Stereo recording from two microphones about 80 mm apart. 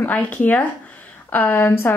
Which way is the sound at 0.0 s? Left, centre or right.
Centre.